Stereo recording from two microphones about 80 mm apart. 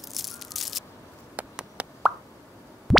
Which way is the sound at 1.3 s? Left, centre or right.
Centre.